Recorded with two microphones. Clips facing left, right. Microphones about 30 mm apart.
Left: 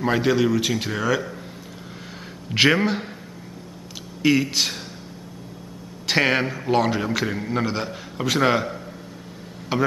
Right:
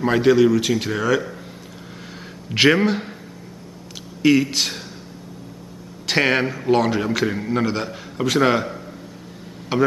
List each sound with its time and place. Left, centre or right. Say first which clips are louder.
0.0 s a man's voice: right 5 dB; centre
2.5 s a man's voice: right 2 dB; centre
4.2 s a man's voice: right 3 dB; centre
6.0 s a man's voice: right 1 dB; centre